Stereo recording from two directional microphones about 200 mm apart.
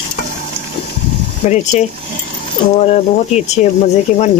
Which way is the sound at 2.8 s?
35° left (ahead or behind).